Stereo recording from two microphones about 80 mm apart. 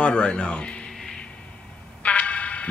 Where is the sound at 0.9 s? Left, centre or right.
Centre.